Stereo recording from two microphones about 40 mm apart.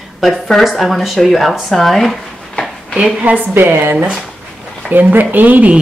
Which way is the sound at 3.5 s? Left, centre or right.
Right.